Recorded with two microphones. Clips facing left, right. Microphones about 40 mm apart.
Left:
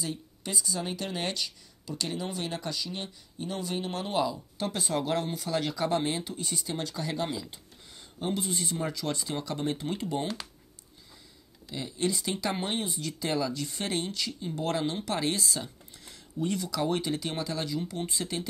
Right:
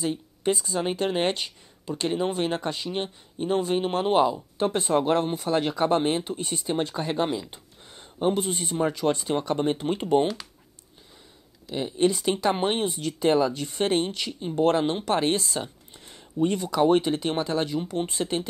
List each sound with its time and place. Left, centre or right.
0.0 s speech: right
11.7 s speech: right